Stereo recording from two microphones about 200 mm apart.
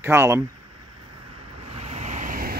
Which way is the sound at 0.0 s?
10° right (ahead or behind).